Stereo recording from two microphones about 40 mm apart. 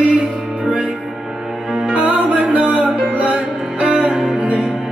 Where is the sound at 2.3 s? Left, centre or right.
Right.